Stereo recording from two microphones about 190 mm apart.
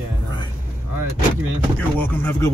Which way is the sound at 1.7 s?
10° left (ahead or behind).